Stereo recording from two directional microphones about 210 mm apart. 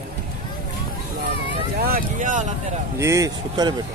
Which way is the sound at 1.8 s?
45° right (ahead or behind).